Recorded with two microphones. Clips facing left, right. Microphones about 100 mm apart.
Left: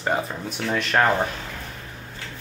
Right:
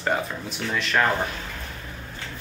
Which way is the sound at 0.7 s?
45° left (ahead or behind).